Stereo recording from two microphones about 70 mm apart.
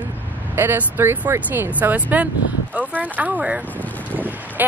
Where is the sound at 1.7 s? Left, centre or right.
Right.